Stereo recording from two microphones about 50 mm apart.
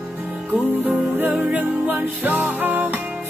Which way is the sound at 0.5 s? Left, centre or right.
Right.